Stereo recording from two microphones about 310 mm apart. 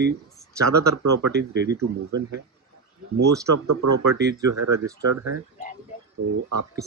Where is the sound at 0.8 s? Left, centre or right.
Right.